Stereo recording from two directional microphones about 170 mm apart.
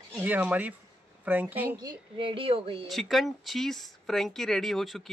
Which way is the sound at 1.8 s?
30° right (ahead or behind).